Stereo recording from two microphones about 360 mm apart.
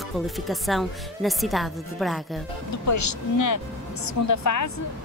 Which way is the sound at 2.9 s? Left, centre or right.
Left.